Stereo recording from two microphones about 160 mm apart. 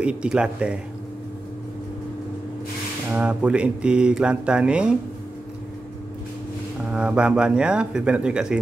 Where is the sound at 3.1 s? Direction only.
10° right (ahead or behind).